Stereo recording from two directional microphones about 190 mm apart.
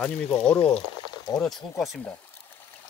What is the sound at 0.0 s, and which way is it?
Speech, 5° left (ahead or behind).